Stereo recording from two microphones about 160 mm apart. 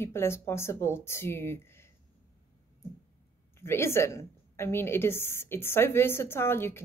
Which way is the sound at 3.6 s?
15° left (ahead or behind).